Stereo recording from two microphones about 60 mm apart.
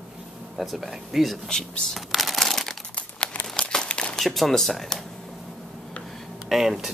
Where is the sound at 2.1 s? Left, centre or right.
Centre.